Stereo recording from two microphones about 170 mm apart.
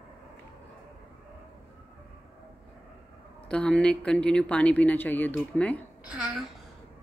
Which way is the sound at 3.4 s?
5° left (ahead or behind).